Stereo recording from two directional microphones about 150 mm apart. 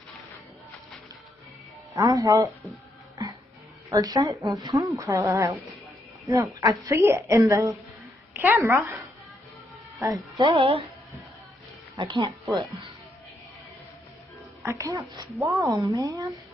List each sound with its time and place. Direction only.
2.0 s a woman's voice: 20° right (ahead or behind)
3.9 s a woman's voice: 20° right (ahead or behind)
9.9 s speech: 25° right (ahead or behind); by 10.9 s 40° right (ahead or behind)
12.0 s speech: 30° right (ahead or behind)
14.6 s a woman's voice: 20° right (ahead or behind)